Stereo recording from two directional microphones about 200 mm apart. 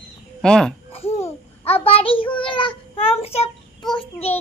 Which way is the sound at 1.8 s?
30° left (ahead or behind).